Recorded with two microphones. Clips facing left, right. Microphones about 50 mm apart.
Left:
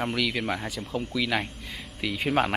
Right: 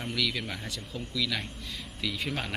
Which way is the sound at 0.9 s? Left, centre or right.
Left.